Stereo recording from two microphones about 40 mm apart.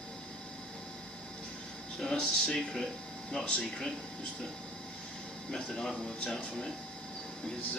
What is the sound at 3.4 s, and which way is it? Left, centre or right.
Speech, left.